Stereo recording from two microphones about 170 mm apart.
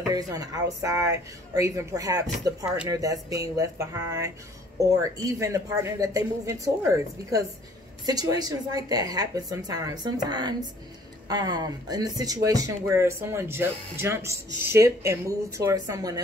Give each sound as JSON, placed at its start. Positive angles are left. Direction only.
{"t": 0.1, "sound": "speech", "side_deg": -20}